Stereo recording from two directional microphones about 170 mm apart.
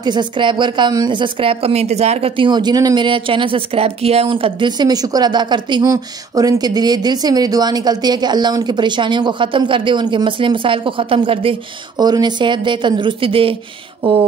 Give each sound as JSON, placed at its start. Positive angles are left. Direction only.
{"t": 0.0, "sound": "a woman's voice", "side_deg": -25}